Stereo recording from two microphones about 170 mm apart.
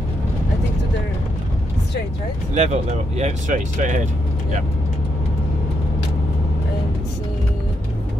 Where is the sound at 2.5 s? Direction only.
40° right (ahead or behind).